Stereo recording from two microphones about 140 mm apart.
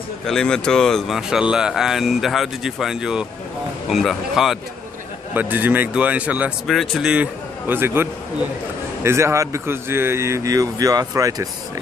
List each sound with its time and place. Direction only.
0.3 s speech: 5° left (ahead or behind)
5.3 s a man's voice: 15° right (ahead or behind)
6.7 s a man's voice: 5° left (ahead or behind); by 11.4 s 25° right (ahead or behind)